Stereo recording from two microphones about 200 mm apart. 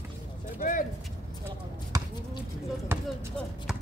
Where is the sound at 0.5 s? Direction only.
40° left (ahead or behind).